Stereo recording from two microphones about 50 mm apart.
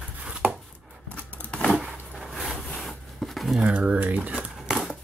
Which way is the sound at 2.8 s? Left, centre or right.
Centre.